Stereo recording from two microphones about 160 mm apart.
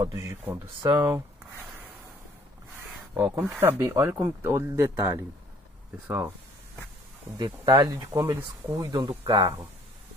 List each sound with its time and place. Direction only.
0.0 s speech: 20° right (ahead or behind)
3.2 s speech: 15° right (ahead or behind)
7.6 s speech: 25° right (ahead or behind)
8.2 s speech: 15° right (ahead or behind)
9.2 s speech: 35° right (ahead or behind)